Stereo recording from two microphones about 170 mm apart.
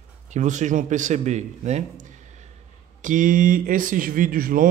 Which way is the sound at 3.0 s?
50° right (ahead or behind).